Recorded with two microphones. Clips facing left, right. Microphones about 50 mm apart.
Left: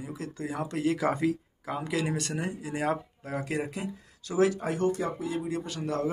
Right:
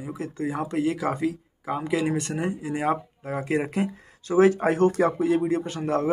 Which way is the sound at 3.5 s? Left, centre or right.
Right.